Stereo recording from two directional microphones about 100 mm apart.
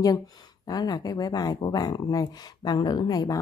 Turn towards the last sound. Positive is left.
turn(degrees=40)  # may be behind; listen again after turning